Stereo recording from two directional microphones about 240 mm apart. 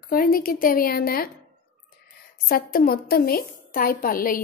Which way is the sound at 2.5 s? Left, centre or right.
Left.